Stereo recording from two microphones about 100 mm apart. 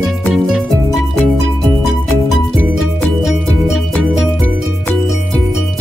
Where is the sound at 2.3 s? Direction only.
Centre (ahead or behind).